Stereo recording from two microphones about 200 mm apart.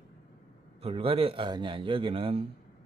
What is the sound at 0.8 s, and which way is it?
A man's voice, 25° right (ahead or behind).